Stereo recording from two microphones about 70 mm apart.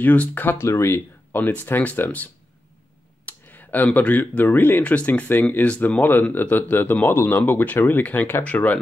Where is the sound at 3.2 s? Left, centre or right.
Left.